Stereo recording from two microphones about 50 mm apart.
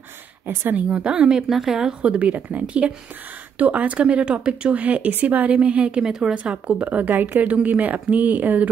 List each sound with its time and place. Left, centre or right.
0.8 s speech: right
1.5 s speech: centre
2.0 s speech: right
6.3 s speech: right